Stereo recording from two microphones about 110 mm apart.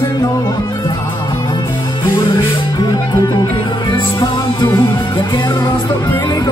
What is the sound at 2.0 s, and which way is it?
Music, 50° left (ahead or behind).